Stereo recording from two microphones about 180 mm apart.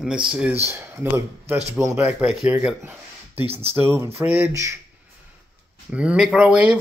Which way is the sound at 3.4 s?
35° right (ahead or behind).